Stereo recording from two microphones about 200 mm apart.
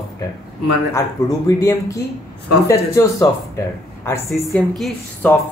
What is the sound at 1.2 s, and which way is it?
Speech, 15° left (ahead or behind).